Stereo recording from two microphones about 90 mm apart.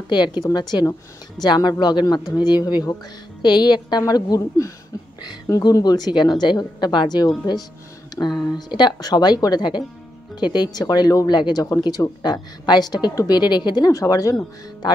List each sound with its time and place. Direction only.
0.1 s a woman's voice: 55° left (ahead or behind)
3.4 s speech: 55° left (ahead or behind)
4.0 s a woman's voice: 40° left (ahead or behind)